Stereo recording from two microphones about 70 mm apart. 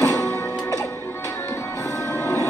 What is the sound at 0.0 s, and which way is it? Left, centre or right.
Music, left.